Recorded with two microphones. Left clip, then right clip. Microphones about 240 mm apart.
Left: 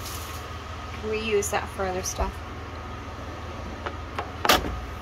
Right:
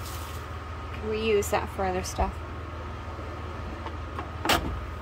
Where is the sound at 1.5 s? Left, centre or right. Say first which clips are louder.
Even; right.